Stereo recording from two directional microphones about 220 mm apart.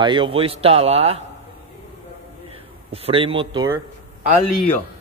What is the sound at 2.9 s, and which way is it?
Speech, 25° right (ahead or behind).